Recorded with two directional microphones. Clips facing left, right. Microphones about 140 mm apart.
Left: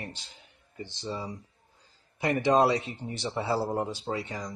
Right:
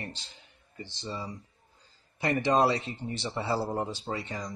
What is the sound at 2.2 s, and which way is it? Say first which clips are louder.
Speech: left 2 dB; 15° left (ahead or behind).